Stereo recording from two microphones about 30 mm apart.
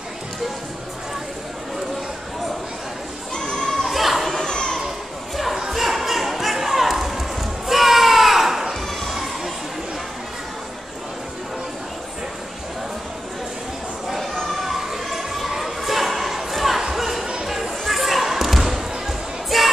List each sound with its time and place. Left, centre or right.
3.3 s children playing: left
3.8 s crowd: centre
4.5 s children playing: left
5.3 s a sound: centre
5.7 s music: centre
14.0 s a sound: centre
14.5 s emergency vehicle: centre
15.5 s a sound: centre
16.8 s music: centre
17.5 s basketball bounce: centre